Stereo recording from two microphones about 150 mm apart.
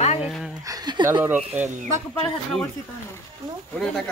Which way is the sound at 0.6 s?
25° right (ahead or behind).